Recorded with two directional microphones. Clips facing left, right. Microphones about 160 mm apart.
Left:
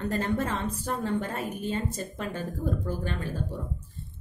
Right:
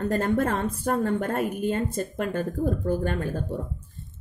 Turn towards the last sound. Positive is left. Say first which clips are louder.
# right 6 dB
turn(degrees=-50)  # may be behind; listen again after turning